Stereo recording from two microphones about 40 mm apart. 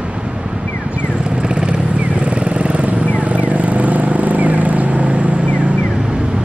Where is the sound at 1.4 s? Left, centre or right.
Right.